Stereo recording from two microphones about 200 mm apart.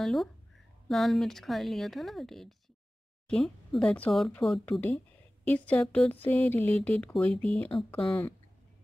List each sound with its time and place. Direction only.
0.0 s speech: centre (ahead or behind)
7.7 s speech: 30° left (ahead or behind)
8.1 s speech: 10° left (ahead or behind)